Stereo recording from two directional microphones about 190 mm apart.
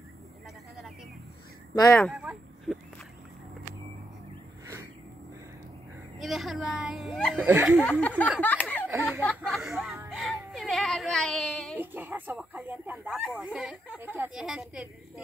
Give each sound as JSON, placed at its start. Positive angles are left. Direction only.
{"t": 1.8, "sound": "speech", "side_deg": 15}
{"t": 2.2, "sound": "a sound", "side_deg": 0}
{"t": 6.1, "sound": "a woman's voice", "side_deg": 0}
{"t": 7.4, "sound": "a woman's voice", "side_deg": -10}
{"t": 8.2, "sound": "a sound", "side_deg": 10}
{"t": 8.8, "sound": "speech", "side_deg": -10}
{"t": 9.2, "sound": "a woman's voice", "side_deg": 5}
{"t": 10.0, "sound": "a sound", "side_deg": 0}
{"t": 11.8, "sound": "speech", "side_deg": -10}
{"t": 13.1, "sound": "a woman's voice", "side_deg": 0}